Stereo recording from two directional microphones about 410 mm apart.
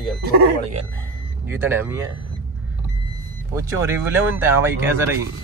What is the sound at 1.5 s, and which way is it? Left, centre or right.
Speech, centre.